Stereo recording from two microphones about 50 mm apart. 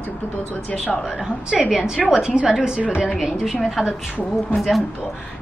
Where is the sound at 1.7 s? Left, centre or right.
Centre.